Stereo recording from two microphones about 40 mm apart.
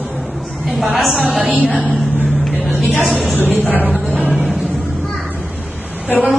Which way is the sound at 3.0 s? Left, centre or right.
Centre.